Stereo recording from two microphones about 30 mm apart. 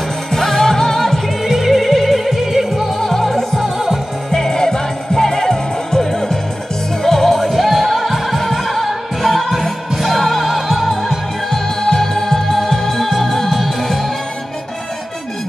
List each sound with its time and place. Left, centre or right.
0.3 s music: centre
1.4 s music: centre
1.8 s music: centre
3.0 s music: centre
3.7 s music: centre
4.3 s music: left; by 11.1 s centre
11.5 s music: centre